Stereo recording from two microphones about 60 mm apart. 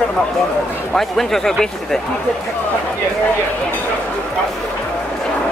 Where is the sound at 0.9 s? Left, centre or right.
Centre.